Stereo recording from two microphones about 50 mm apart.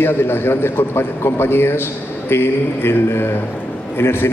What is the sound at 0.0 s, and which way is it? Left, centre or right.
A man's voice, left.